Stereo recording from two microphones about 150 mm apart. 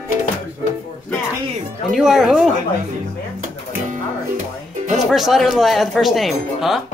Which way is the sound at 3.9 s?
55° right (ahead or behind).